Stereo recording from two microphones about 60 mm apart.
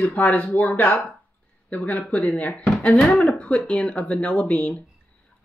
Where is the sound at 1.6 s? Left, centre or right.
Left.